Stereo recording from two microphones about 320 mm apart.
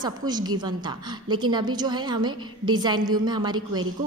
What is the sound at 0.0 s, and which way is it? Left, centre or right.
A woman's voice, centre.